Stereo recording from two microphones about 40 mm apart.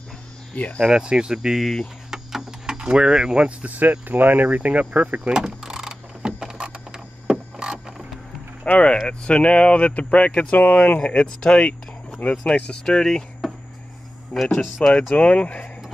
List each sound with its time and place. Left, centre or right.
0.8 s speech: right
2.0 s a sound: centre
2.8 s speech: right
3.3 s speech: right
3.7 s speech: right
5.3 s a sound: centre
8.6 s speech: left
11.0 s speech: left
12.2 s speech: left
12.8 s speech: centre
14.3 s speech: centre
14.8 s speech: left